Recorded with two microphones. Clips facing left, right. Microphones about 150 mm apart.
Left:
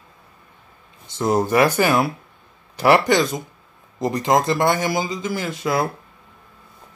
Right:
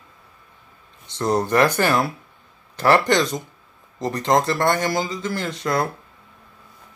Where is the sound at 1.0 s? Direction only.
5° left (ahead or behind).